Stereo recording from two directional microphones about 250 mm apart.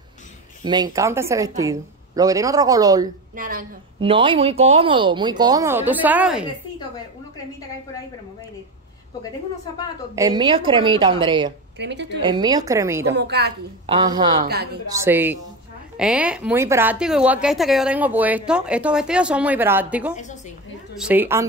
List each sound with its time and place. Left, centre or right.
0.7 s speech: centre
3.3 s a woman's voice: right
4.0 s speech: centre
10.1 s a woman's voice: centre
11.8 s a woman's voice: right
12.2 s speech: centre
13.1 s a woman's voice: right
13.8 s speech: centre
14.4 s a woman's voice: right
14.9 s a woman's voice: centre